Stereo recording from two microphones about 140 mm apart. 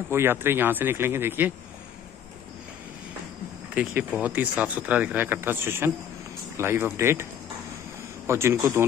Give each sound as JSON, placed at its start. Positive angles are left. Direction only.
{"t": 0.1, "sound": "speech", "side_deg": -15}
{"t": 3.7, "sound": "speech", "side_deg": -10}
{"t": 8.3, "sound": "speech", "side_deg": -20}